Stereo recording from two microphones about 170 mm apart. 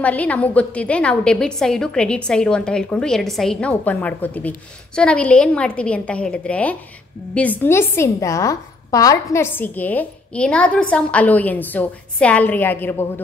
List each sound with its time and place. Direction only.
0.0 s a woman's voice: 10° left (ahead or behind)